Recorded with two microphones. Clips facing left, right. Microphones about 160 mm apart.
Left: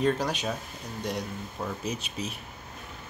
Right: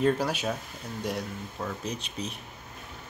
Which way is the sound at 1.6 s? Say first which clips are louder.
Left 1 dB; 5° left (ahead or behind).